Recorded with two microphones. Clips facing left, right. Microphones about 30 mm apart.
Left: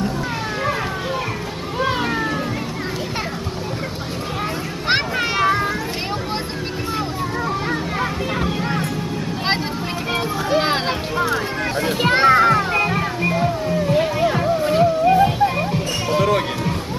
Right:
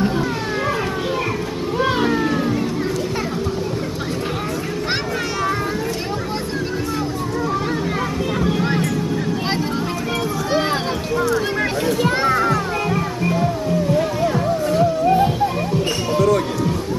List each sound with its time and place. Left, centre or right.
1.8 s cat: centre
10.6 s a sound: left
12.0 s music: left
12.7 s music: left